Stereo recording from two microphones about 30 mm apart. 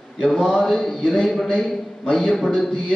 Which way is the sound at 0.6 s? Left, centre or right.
Centre.